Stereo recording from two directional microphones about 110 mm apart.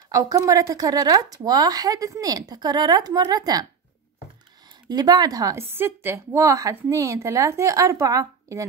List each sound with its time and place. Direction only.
0.1 s speech: 30° right (ahead or behind)
4.8 s a woman's voice: 40° right (ahead or behind)